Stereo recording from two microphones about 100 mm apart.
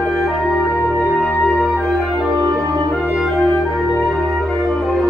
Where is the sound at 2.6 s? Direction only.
30° right (ahead or behind).